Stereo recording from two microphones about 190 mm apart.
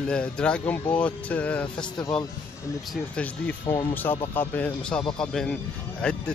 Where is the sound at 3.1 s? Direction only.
10° left (ahead or behind).